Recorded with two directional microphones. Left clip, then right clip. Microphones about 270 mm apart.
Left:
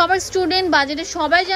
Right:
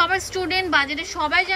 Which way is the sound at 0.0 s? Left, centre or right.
Left.